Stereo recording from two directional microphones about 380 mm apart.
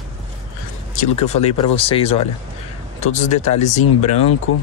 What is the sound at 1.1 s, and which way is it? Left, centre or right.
Speech, centre.